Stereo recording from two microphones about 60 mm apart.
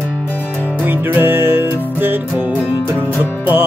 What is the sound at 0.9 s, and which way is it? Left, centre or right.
Music, right.